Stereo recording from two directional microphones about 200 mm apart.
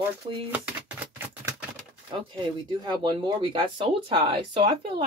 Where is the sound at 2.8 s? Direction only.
25° right (ahead or behind).